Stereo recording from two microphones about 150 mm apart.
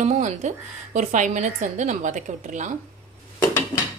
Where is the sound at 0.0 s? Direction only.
50° right (ahead or behind).